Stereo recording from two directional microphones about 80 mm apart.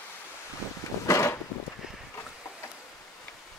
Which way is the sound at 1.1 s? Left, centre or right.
Left.